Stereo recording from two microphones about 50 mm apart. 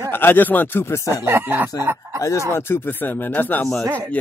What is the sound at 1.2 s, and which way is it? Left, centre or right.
Speech, right.